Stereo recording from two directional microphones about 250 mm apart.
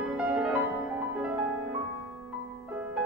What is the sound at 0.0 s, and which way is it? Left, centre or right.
Music, centre.